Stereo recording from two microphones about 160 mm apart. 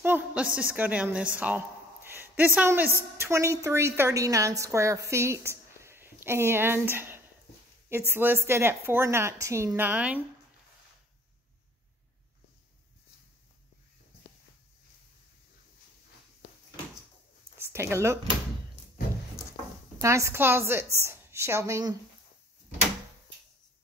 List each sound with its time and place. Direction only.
0.0 s a woman's voice: 10° right (ahead or behind)
2.0 s a sound: 15° right (ahead or behind)
3.2 s a woman's voice: 15° right (ahead or behind)
17.6 s speech: 15° right (ahead or behind)
20.0 s a woman's voice: 20° right (ahead or behind)